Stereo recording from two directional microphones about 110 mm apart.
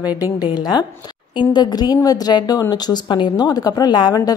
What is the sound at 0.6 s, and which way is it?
A woman's voice, 40° left (ahead or behind).